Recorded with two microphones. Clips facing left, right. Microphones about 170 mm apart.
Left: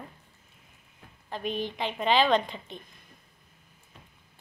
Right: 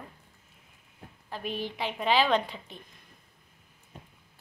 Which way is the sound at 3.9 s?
45° right (ahead or behind).